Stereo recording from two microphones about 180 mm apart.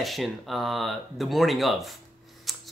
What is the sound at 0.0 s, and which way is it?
Speech, centre (ahead or behind).